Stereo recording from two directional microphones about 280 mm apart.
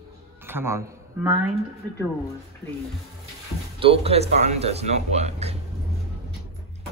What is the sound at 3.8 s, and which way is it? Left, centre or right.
Speech, right.